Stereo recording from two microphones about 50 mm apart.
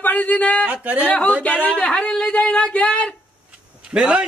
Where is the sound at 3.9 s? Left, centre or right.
Centre.